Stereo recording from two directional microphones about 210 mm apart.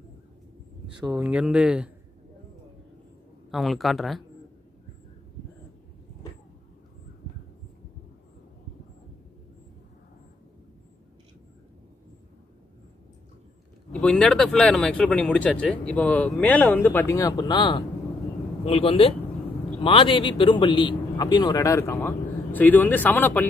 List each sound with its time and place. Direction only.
1.1 s speech: 5° right (ahead or behind)
3.5 s speech: centre (ahead or behind)
13.9 s a man's voice: 5° left (ahead or behind)